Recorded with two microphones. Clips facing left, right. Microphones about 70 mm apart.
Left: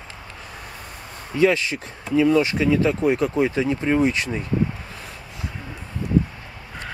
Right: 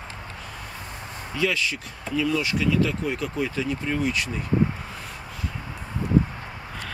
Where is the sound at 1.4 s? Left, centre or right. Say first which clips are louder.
Left 7 dB; left.